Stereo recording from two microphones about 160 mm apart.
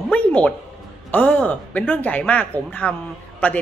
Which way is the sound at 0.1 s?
10° left (ahead or behind).